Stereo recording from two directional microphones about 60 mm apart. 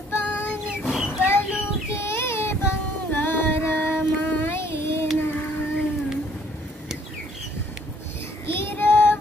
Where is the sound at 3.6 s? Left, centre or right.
Left.